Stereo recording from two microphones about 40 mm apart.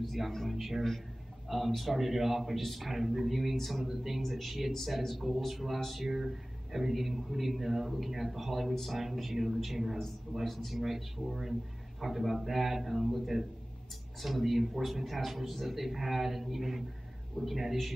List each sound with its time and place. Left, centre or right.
0.0 s speech: centre
3.9 s speech: centre
4.2 s speech: centre
6.0 s speech: centre